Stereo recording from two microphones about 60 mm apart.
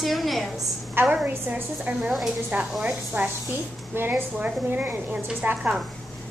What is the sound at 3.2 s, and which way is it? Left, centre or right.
A woman's voice, right.